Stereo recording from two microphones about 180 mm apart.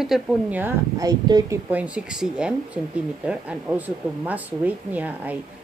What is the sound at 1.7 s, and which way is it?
A woman's voice, 5° right (ahead or behind).